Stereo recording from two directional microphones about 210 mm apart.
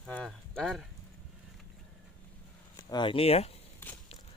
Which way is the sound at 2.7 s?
20° left (ahead or behind).